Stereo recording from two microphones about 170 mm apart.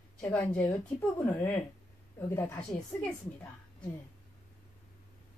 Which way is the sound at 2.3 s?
15° left (ahead or behind).